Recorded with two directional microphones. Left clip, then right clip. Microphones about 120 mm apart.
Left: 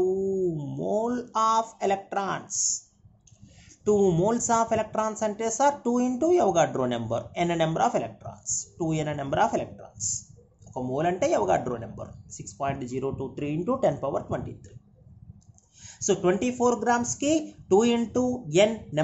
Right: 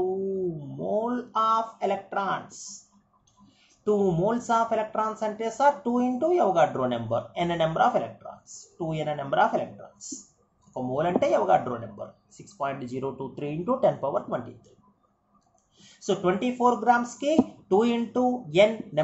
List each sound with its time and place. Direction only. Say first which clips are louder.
0.7 s speech: right 1 dB; 55° left (ahead or behind)
3.8 s speech: left 2 dB; 40° left (ahead or behind)
10.7 s speech: right 1 dB; 35° left (ahead or behind)
15.8 s speech: left 2 dB; 45° left (ahead or behind)